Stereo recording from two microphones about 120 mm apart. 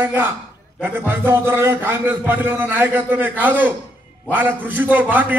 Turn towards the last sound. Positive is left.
turn(degrees=-15)  # may be behind; listen again after turning